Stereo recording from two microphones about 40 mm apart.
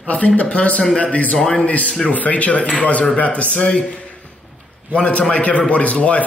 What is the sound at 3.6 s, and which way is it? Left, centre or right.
Speech, left.